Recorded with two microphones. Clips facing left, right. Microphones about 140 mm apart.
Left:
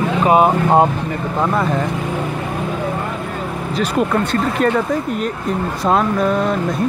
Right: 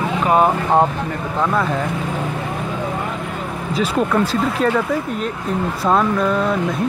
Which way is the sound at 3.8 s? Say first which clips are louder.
Even; 5° left (ahead or behind).